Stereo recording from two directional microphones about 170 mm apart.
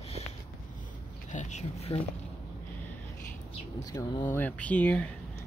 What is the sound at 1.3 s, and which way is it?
Speech, 45° left (ahead or behind).